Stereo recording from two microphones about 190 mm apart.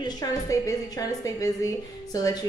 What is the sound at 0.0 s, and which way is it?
A woman's voice, 20° left (ahead or behind).